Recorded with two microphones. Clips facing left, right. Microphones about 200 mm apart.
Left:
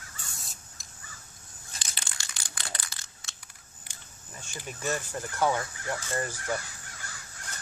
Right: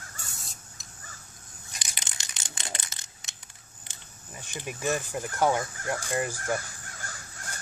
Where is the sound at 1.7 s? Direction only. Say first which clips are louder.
Even; 15° right (ahead or behind).